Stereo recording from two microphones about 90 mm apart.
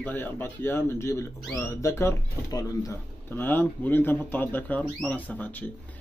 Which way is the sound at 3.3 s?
20° left (ahead or behind).